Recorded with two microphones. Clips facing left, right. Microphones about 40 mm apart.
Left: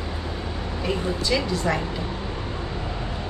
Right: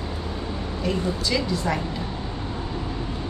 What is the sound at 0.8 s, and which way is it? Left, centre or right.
Speech, centre.